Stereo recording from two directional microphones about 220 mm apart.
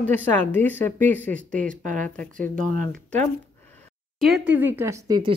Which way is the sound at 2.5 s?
40° right (ahead or behind).